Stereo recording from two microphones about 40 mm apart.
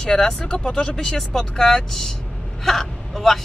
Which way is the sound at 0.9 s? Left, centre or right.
Centre.